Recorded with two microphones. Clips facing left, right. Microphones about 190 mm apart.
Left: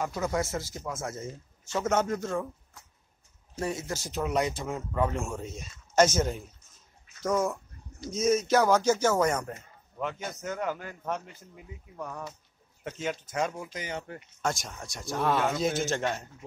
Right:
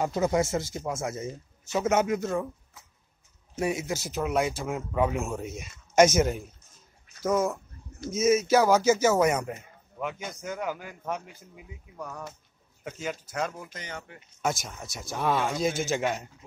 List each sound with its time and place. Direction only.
0.0 s a man's voice: 25° right (ahead or behind); by 13.7 s centre (ahead or behind)
14.1 s speech: 40° left (ahead or behind)
14.4 s speech: 5° right (ahead or behind)